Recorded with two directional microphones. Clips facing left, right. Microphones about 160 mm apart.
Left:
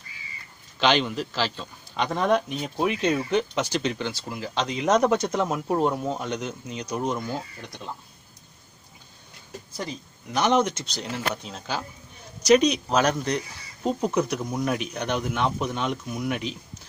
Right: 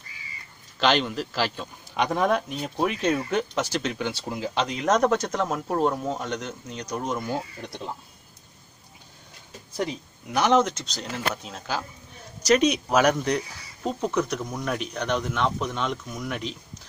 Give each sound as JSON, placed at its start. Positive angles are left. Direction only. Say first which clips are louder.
{"t": 0.7, "sound": "a man's voice", "louder": "even", "side_deg": 0}
{"t": 7.2, "sound": "speech", "louder": "right 2 dB", "side_deg": -20}
{"t": 9.8, "sound": "a man's voice", "louder": "right 5 dB", "side_deg": -10}
{"t": 13.8, "sound": "a man's voice", "louder": "left 2 dB", "side_deg": 5}